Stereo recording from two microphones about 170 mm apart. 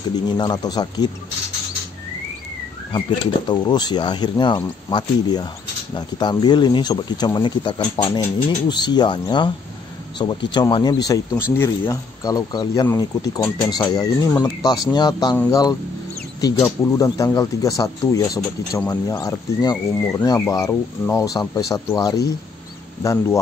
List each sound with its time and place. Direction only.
0.1 s speech: 25° left (ahead or behind)
3.4 s speech: 25° left (ahead or behind)
16.3 s speech: 20° left (ahead or behind)